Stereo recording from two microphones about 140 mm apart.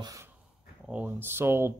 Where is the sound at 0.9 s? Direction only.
10° right (ahead or behind).